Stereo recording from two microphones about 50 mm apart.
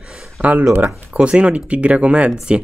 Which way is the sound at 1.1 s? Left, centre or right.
Right.